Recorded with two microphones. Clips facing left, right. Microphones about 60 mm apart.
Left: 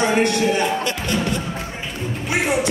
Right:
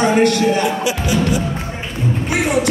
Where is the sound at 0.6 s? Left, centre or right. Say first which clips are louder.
Right 3 dB; centre.